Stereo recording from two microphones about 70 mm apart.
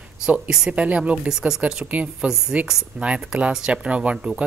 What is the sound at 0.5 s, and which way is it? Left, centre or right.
Speech, centre.